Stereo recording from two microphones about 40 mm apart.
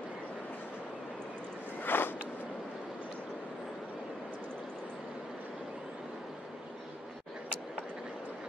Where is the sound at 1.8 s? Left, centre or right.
Left.